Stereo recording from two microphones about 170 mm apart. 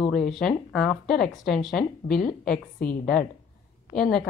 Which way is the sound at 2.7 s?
60° left (ahead or behind).